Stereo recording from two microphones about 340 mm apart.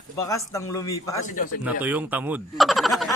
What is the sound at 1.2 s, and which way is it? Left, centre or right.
Speech, left.